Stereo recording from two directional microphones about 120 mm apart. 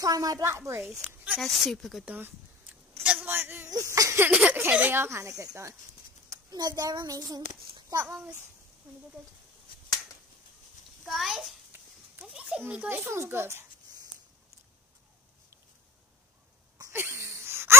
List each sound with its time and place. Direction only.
0.0 s speech: 30° right (ahead or behind)
1.0 s speech: 15° right (ahead or behind)
1.4 s a woman's voice: centre (ahead or behind)
2.0 s speech: 15° right (ahead or behind)
3.0 s a sound: 15° right (ahead or behind)
4.3 s a sound: 10° right (ahead or behind)
4.6 s a child's voice: 15° right (ahead or behind); by 7.4 s 30° right (ahead or behind)
7.9 s speech: 20° right (ahead or behind)
11.1 s a woman's voice: centre (ahead or behind)
11.7 s a sound: 15° right (ahead or behind)
16.7 s wheeze: 20° right (ahead or behind)